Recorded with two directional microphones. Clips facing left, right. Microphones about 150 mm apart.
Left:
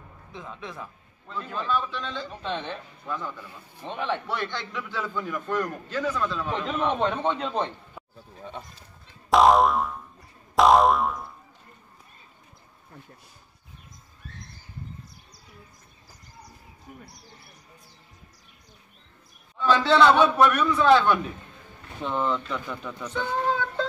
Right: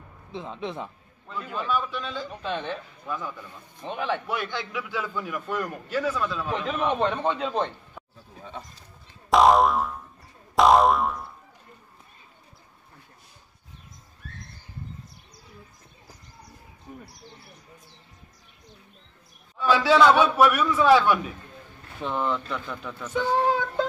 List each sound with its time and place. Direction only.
0.3 s a man's voice: 25° right (ahead or behind)
1.3 s a man's voice: 5° right (ahead or behind)
9.3 s boing: centre (ahead or behind)
19.6 s a man's voice: 10° right (ahead or behind)